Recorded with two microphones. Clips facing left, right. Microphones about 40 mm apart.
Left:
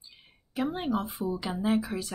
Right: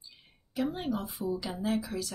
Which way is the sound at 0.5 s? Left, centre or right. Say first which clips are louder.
Left 3 dB; left.